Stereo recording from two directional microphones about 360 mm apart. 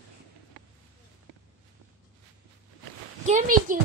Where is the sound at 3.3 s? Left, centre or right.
Right.